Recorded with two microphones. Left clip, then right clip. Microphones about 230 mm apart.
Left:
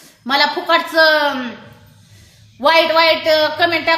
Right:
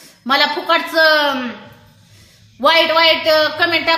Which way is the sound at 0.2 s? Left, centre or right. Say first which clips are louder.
Even; centre.